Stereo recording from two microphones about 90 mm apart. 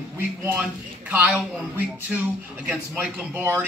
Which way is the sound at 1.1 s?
20° right (ahead or behind).